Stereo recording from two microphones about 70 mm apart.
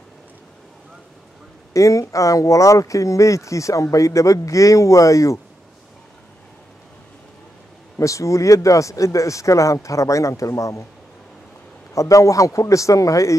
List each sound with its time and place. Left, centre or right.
1.7 s speech: left
8.0 s speech: left
11.9 s speech: left